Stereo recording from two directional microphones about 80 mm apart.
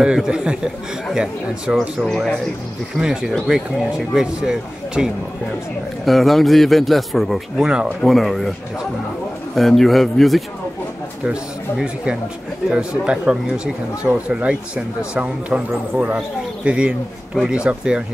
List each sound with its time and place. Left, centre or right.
0.0 s a man's voice: centre
3.0 s speech: centre
6.0 s a man's voice: centre
8.1 s a man's voice: centre
9.6 s a man's voice: centre
11.8 s speech: centre